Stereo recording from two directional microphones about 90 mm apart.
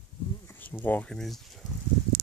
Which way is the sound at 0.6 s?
20° left (ahead or behind).